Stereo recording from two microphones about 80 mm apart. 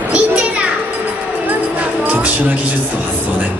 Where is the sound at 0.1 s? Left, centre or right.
Centre.